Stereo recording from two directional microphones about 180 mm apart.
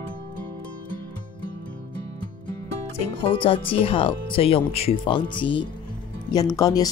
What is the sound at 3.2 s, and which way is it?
Speech, 30° left (ahead or behind).